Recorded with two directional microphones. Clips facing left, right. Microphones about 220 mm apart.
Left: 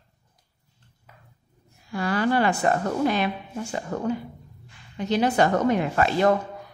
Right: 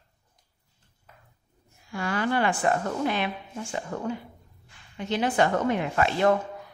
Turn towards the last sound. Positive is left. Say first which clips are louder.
# left 3 dB
turn(degrees=40)  # may be behind; listen again after turning